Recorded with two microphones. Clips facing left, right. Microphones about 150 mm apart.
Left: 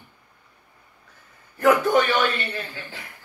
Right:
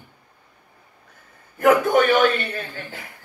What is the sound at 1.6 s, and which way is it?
Speech, 50° right (ahead or behind).